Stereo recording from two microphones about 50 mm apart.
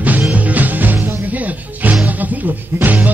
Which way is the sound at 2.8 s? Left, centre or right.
Right.